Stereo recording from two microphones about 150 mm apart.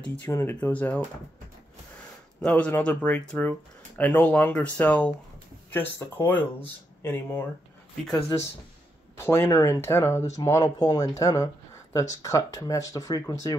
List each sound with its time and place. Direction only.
0.0 s speech: 10° left (ahead or behind)
2.4 s speech: 10° left (ahead or behind)
9.1 s speech: 15° left (ahead or behind)